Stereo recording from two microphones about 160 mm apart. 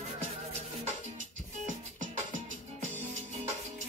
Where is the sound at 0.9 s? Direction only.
50° right (ahead or behind).